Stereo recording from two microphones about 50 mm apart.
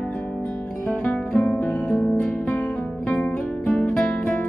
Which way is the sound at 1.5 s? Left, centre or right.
Left.